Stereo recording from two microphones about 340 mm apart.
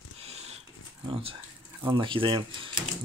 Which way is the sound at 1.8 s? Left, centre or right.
Centre.